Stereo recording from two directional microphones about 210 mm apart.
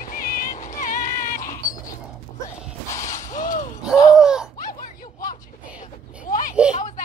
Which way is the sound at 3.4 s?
40° left (ahead or behind).